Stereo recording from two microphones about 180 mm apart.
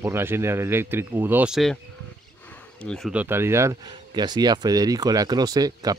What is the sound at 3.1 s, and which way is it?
Speech, 10° right (ahead or behind).